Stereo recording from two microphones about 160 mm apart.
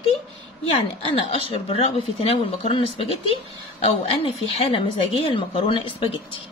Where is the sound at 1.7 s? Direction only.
35° left (ahead or behind).